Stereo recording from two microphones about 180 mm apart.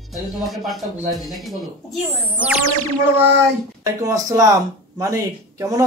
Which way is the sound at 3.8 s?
20° right (ahead or behind).